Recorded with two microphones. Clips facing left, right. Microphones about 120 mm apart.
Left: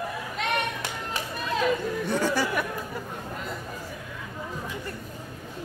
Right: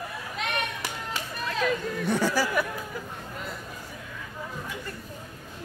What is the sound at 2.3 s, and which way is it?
Speech, 5° right (ahead or behind).